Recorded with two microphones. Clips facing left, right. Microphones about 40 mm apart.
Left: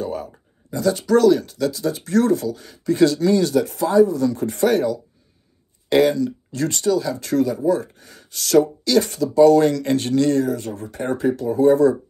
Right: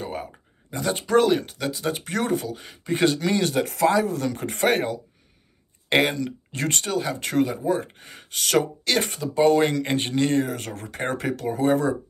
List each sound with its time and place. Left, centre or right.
0.0 s a sound: right
0.7 s speech: right
3.6 s speech: right
10.7 s speech: right
11.4 s speech: right